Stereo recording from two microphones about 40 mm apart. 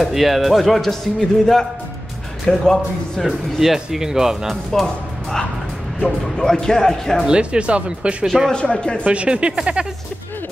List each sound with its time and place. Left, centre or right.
0.1 s a man's voice: centre
3.3 s speech: centre
4.7 s speech: centre
5.9 s speech: centre
7.2 s speech: right
8.5 s speech: left
9.0 s speech: right